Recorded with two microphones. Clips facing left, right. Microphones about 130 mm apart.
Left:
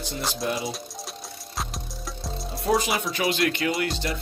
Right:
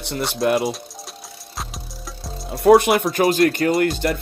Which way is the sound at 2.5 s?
65° right (ahead or behind).